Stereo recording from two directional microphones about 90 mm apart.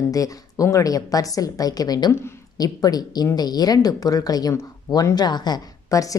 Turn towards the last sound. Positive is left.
turn(degrees=40)  # may be behind; listen again after turning